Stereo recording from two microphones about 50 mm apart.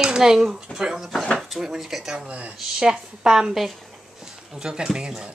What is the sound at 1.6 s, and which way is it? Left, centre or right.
Speech, centre.